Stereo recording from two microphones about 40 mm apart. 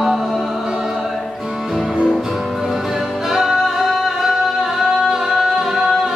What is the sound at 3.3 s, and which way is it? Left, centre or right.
Music, centre.